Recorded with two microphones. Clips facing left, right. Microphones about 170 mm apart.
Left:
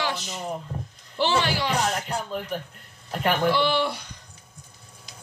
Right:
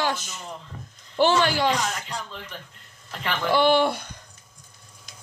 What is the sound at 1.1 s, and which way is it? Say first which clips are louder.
Speech: right 4 dB; 50° right (ahead or behind).